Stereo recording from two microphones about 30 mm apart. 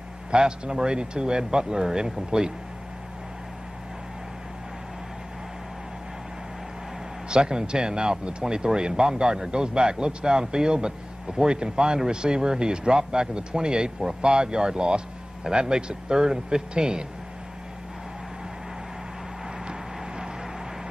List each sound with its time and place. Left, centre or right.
0.3 s speech: right
7.2 s speech: right